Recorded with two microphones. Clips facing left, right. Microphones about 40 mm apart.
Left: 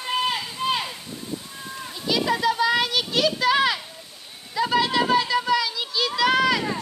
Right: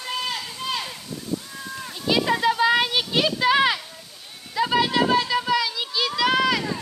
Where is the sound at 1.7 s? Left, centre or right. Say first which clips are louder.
Even; centre.